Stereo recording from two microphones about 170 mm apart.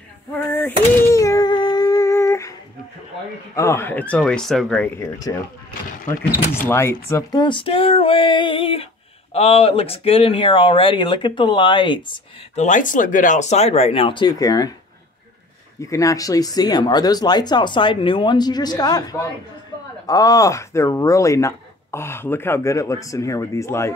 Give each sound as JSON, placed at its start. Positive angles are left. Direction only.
{"t": 0.5, "sound": "a sound", "side_deg": 10}
{"t": 3.5, "sound": "speech", "side_deg": 15}
{"t": 5.0, "sound": "speech", "side_deg": 20}
{"t": 6.6, "sound": "speech", "side_deg": 15}
{"t": 12.5, "sound": "speech", "side_deg": 50}
{"t": 15.8, "sound": "speech", "side_deg": 20}